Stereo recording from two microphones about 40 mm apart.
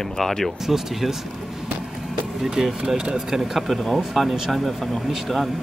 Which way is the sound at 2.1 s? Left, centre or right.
Centre.